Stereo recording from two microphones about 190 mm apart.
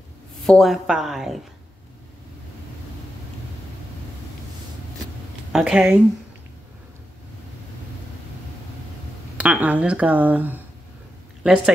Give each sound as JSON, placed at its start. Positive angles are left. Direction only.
{"t": 0.4, "sound": "speech", "side_deg": 0}
{"t": 5.5, "sound": "speech", "side_deg": -5}
{"t": 9.4, "sound": "speech", "side_deg": -10}